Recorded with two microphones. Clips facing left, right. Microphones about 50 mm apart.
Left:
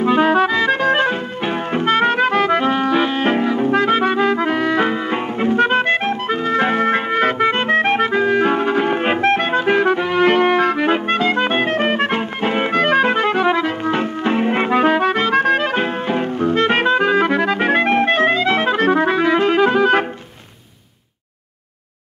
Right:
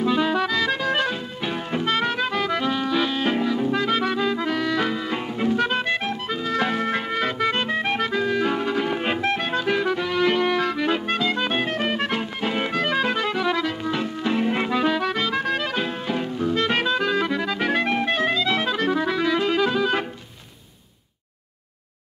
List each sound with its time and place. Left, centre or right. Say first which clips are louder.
0.0 s music: left 7 dB; left
10.2 s clarinet: left 7 dB; left
17.6 s clarinet: left 7 dB; left